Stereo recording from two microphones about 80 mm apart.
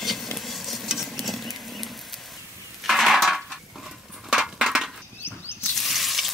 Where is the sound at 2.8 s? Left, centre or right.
Centre.